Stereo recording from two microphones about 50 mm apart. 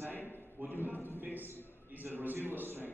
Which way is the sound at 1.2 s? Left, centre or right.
Right.